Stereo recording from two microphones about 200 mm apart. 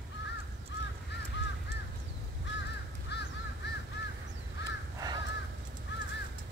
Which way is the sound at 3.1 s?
55° left (ahead or behind).